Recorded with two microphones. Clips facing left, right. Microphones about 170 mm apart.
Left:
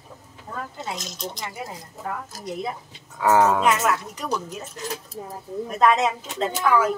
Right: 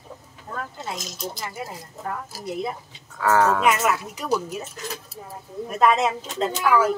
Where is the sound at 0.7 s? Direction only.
Centre (ahead or behind).